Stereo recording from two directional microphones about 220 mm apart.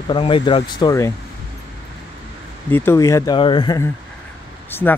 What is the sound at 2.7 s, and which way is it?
Speech, 10° left (ahead or behind).